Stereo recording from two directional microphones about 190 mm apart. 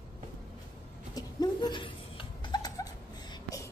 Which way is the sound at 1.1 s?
20° left (ahead or behind).